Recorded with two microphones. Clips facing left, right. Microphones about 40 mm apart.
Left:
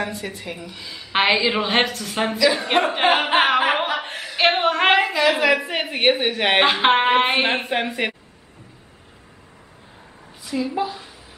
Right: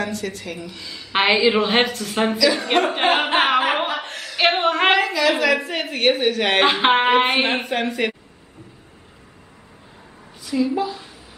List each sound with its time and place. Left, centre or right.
0.0 s a woman's voice: centre
2.3 s speech: centre
4.0 s a sound: centre
4.4 s a sound: centre
5.4 s a woman's voice: centre
6.6 s a woman's voice: centre
10.4 s a woman's voice: centre